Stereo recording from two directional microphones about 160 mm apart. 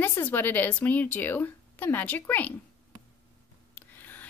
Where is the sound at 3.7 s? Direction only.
10° left (ahead or behind).